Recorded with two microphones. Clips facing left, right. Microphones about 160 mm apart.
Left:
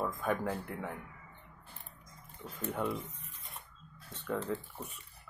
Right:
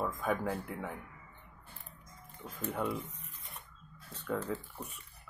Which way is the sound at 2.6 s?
Centre (ahead or behind).